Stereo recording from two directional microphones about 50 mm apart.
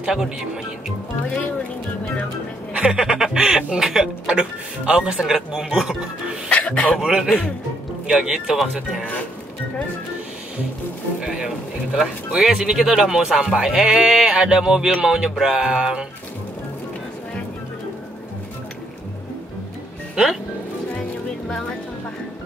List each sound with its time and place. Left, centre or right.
0.0 s speech: centre
2.7 s speech: centre
6.5 s speech: centre
7.0 s speech: centre
11.1 s speech: centre